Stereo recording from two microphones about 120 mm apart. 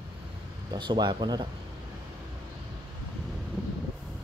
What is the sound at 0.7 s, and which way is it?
Speech, 40° right (ahead or behind).